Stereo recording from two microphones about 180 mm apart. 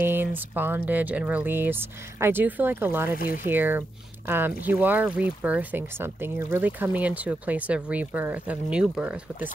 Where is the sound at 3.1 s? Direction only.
50° left (ahead or behind).